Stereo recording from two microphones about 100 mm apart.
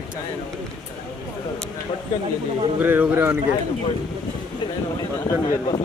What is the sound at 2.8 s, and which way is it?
Speech, 20° right (ahead or behind).